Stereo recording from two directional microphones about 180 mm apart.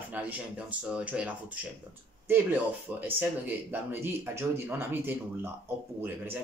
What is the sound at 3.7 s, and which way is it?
Speech, 10° right (ahead or behind).